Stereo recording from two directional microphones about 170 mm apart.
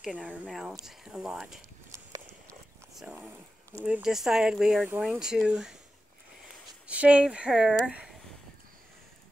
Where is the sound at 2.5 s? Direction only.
5° left (ahead or behind).